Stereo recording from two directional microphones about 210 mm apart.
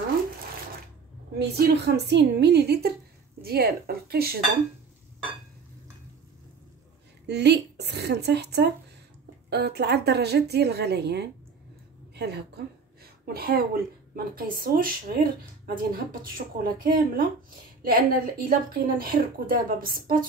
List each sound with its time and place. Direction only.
1.4 s a woman's voice: 50° right (ahead or behind)
7.2 s a woman's voice: 55° right (ahead or behind)